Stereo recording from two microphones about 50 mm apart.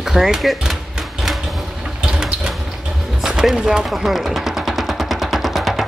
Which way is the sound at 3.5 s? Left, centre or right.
Centre.